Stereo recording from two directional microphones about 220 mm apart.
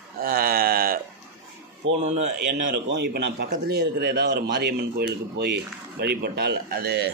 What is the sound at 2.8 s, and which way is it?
Speech, 50° right (ahead or behind).